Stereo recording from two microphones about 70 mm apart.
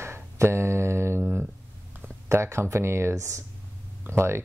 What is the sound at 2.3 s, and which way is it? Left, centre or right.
Speech, right.